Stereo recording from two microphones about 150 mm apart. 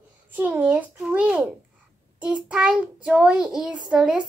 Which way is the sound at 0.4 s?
10° right (ahead or behind).